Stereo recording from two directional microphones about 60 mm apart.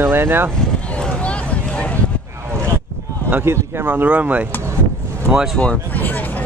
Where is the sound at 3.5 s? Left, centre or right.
Right.